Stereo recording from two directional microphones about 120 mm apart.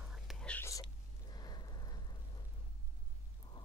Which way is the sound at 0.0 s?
5° right (ahead or behind).